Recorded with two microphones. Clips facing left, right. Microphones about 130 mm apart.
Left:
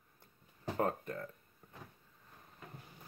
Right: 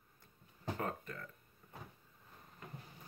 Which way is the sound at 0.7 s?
35° left (ahead or behind).